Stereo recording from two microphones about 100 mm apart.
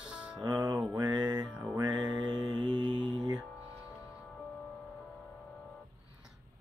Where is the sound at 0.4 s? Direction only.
45° right (ahead or behind).